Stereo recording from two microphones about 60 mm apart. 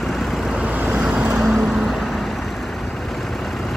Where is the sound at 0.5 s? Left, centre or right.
Centre.